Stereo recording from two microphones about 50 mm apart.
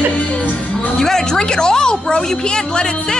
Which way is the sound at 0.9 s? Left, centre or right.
Centre.